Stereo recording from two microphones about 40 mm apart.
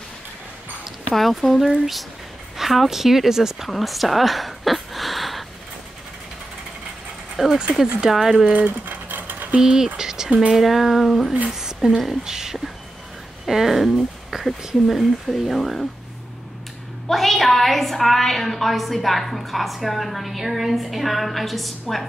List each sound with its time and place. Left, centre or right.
1.1 s a woman's voice: centre
7.4 s speech: centre
8.5 s typewriter: right
9.6 s speech: centre
9.9 s a sound: centre
10.3 s speech: right
10.6 s a woman's voice: centre
11.5 s a woman's voice: centre
14.9 s a woman's voice: centre
17.1 s a woman's voice: centre